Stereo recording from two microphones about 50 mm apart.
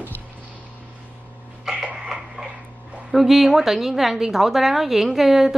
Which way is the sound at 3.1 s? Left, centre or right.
Centre.